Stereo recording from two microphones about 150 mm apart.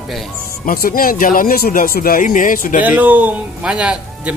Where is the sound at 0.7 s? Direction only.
70° left (ahead or behind).